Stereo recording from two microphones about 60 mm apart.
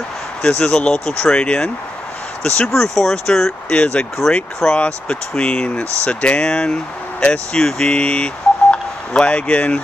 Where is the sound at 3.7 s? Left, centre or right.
Centre.